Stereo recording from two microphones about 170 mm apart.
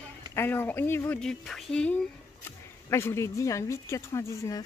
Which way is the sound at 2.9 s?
15° left (ahead or behind).